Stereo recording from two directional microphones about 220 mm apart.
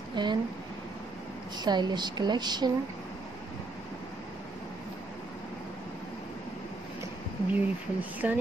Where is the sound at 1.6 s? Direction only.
20° right (ahead or behind).